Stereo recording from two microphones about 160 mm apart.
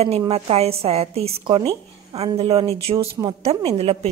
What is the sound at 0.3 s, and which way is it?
A woman's voice, 40° right (ahead or behind).